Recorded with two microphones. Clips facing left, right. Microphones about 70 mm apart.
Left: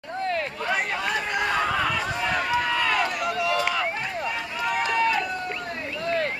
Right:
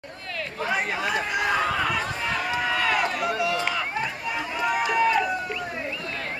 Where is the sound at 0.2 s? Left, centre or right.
Left.